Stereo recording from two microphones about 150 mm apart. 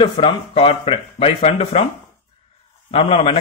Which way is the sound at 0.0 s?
40° left (ahead or behind).